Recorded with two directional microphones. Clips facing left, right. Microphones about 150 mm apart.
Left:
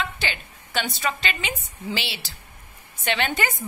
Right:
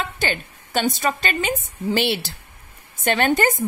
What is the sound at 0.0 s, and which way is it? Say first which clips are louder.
A woman's voice: right 4 dB; 50° right (ahead or behind).